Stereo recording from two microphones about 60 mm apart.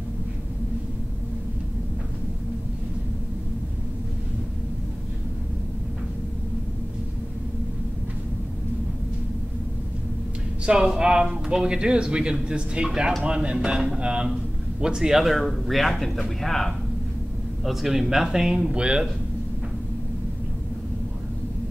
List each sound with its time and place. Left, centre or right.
10.6 s a man's voice: centre